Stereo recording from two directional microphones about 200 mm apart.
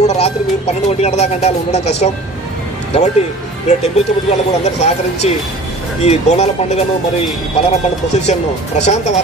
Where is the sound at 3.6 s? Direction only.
35° left (ahead or behind).